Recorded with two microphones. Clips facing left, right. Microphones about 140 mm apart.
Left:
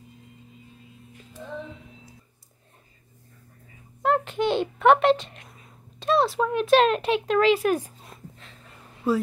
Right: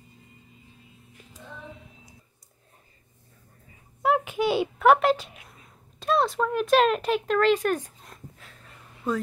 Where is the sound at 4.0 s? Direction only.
5° right (ahead or behind).